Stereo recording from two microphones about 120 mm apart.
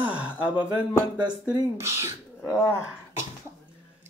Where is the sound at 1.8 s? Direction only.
20° right (ahead or behind).